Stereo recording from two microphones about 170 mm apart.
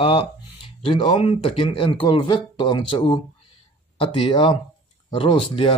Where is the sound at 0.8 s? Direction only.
30° left (ahead or behind).